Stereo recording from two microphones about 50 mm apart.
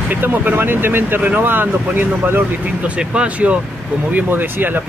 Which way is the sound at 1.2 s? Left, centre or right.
Right.